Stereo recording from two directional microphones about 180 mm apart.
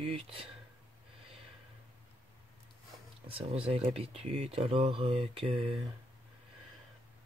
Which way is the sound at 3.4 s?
35° right (ahead or behind).